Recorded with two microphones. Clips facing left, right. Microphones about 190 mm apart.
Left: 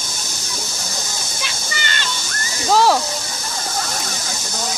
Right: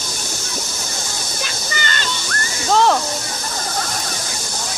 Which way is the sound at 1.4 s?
45° right (ahead or behind).